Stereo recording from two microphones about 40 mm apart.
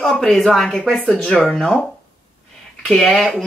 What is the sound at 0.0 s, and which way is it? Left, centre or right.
Speech, centre.